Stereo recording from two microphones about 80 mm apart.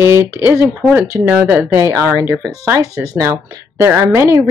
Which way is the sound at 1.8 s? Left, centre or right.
Right.